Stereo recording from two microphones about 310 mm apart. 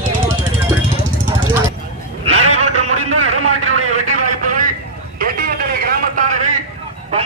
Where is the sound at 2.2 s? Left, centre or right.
Right.